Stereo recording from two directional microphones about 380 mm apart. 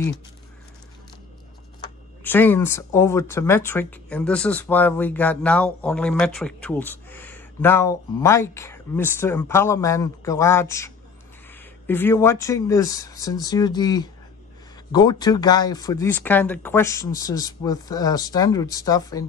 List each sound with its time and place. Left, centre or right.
2.2 s speech: centre
11.9 s speech: centre